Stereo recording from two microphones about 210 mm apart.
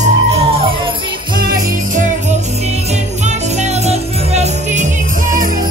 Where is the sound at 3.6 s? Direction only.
30° right (ahead or behind).